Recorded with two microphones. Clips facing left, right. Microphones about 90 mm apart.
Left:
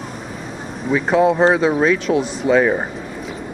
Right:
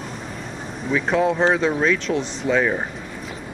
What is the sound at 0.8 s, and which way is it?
Speech, 5° left (ahead or behind).